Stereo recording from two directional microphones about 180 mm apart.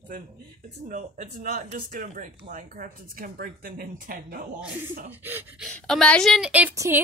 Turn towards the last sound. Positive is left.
turn(degrees=-15)  # may be behind; listen again after turning